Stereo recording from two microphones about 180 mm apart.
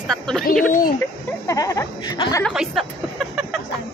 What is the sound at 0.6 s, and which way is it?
Speech, 50° left (ahead or behind).